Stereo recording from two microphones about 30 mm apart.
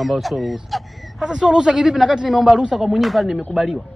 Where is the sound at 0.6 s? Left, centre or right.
Centre.